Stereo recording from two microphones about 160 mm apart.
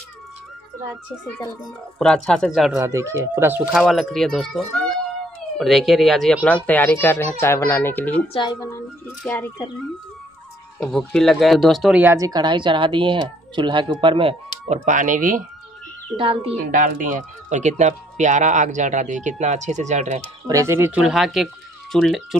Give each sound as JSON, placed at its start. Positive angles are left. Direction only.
{"t": 2.0, "sound": "speech", "side_deg": 5}
{"t": 2.8, "sound": "speech", "side_deg": -20}
{"t": 3.7, "sound": "a child's voice", "side_deg": 0}
{"t": 8.3, "sound": "a woman's voice", "side_deg": 30}
{"t": 8.5, "sound": "a child's voice", "side_deg": 15}
{"t": 10.8, "sound": "speech", "side_deg": 0}
{"t": 12.0, "sound": "speech", "side_deg": -20}
{"t": 14.9, "sound": "speech", "side_deg": -55}
{"t": 16.2, "sound": "a woman's voice", "side_deg": -35}
{"t": 16.7, "sound": "speech", "side_deg": -55}
{"t": 20.4, "sound": "speech", "side_deg": -20}
{"t": 21.0, "sound": "speech", "side_deg": 0}